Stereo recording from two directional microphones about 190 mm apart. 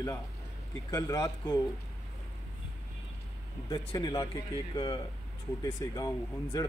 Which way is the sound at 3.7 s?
25° left (ahead or behind).